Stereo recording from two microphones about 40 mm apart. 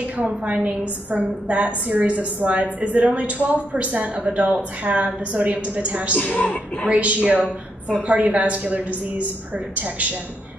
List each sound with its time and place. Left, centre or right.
0.5 s a woman's voice: right
6.2 s a woman's voice: left
6.9 s a woman's voice: right